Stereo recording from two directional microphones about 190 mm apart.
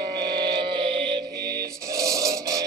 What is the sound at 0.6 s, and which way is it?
Music, 25° right (ahead or behind).